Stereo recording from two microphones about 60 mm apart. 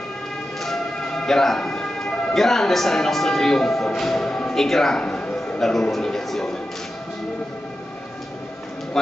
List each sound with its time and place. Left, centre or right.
0.6 s speech: centre
5.0 s a sound: centre
5.6 s speech: centre
9.0 s music: centre